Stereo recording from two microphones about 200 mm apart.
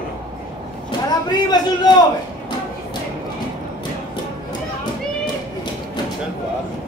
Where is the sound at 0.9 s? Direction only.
20° left (ahead or behind).